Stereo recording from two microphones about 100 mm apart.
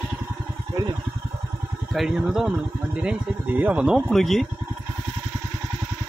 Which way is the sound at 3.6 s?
15° right (ahead or behind).